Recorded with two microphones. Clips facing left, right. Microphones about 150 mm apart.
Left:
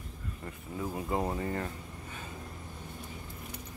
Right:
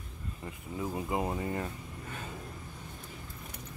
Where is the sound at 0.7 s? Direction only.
15° right (ahead or behind).